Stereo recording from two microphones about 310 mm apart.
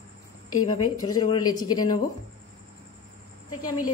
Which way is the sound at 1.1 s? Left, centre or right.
Centre.